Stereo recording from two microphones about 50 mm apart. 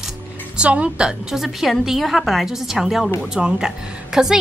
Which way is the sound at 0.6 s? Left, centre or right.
Right.